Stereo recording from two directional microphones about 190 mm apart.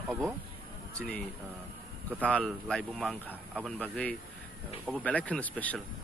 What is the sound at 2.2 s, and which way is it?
Speech, 5° left (ahead or behind).